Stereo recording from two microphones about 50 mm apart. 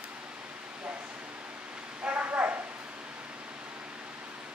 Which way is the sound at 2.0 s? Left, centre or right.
Right.